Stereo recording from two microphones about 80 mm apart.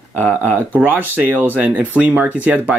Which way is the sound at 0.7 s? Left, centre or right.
Right.